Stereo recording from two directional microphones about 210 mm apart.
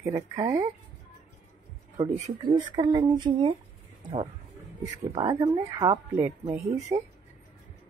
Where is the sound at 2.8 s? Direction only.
20° right (ahead or behind).